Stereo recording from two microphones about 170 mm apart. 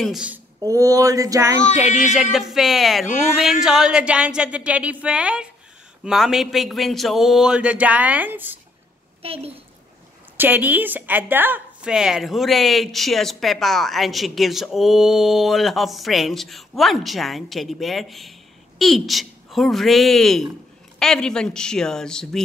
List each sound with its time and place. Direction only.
0.0 s a woman's voice: 5° right (ahead or behind)
0.6 s a sound: 20° right (ahead or behind)
2.3 s a woman's voice: centre (ahead or behind)
9.2 s a child's voice: 35° right (ahead or behind)
10.3 s a woman's voice: 10° right (ahead or behind)